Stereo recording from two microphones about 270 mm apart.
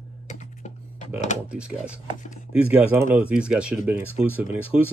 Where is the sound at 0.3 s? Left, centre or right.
Left.